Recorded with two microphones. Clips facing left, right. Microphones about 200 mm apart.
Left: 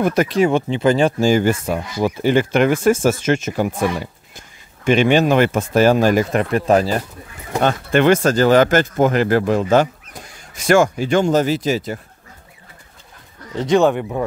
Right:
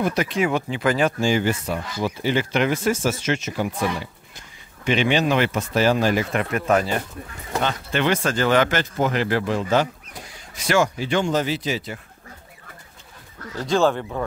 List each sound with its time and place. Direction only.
0.0 s speech: 50° left (ahead or behind)
0.4 s speech: 25° left (ahead or behind)
1.2 s speech: 45° left (ahead or behind)
7.6 s speech: 50° left (ahead or behind)
13.6 s speech: 20° left (ahead or behind)